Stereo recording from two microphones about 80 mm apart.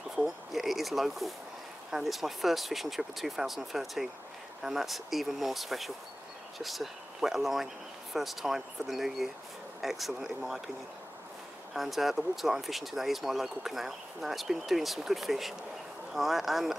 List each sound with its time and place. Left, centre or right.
0.1 s a sound: centre
1.9 s speech: centre
11.7 s speech: centre